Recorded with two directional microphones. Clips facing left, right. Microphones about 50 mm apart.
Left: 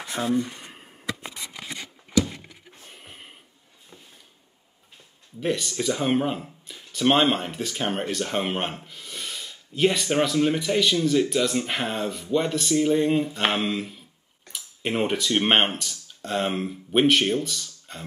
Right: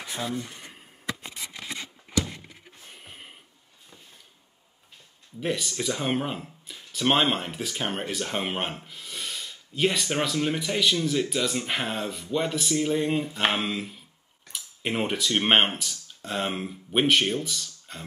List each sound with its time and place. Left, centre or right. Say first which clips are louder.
0.2 s speech: left 8 dB; left
2.9 s a sound: even; centre
5.4 s speech: left 3 dB; centre